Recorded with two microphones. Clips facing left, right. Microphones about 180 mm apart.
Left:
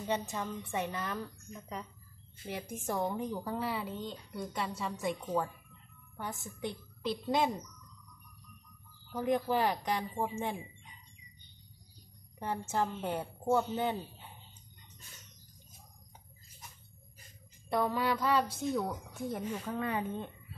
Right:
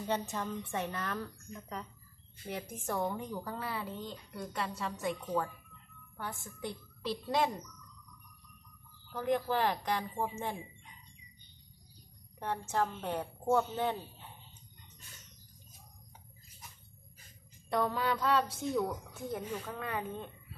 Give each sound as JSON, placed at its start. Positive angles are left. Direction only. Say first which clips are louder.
{"t": 0.0, "sound": "a woman's voice", "louder": "even", "side_deg": 5}
{"t": 9.1, "sound": "a woman's voice", "louder": "left 1 dB", "side_deg": 5}
{"t": 12.4, "sound": "a woman's voice", "louder": "even", "side_deg": 5}
{"t": 17.7, "sound": "a sound", "louder": "left 1 dB", "side_deg": 20}
{"t": 18.0, "sound": "a woman's voice", "louder": "left 1 dB", "side_deg": 10}